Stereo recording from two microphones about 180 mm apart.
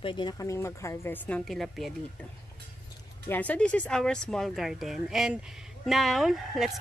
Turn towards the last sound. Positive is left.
turn(degrees=0)  # may be behind; listen again after turning